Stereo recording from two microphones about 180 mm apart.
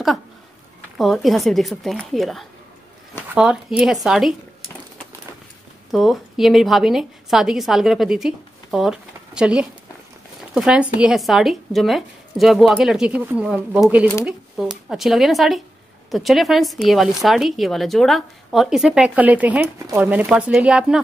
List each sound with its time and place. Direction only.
0.9 s speech: centre (ahead or behind)
5.9 s a woman's voice: centre (ahead or behind)